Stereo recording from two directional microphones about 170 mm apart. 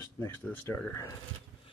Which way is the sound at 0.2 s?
15° left (ahead or behind).